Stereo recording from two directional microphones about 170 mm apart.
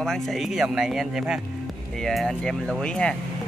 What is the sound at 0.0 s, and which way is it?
Speech, centre (ahead or behind).